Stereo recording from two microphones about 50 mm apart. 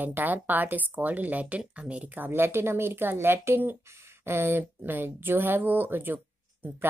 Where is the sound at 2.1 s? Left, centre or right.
Right.